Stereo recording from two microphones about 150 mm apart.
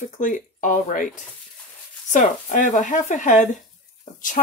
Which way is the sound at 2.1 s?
60° left (ahead or behind).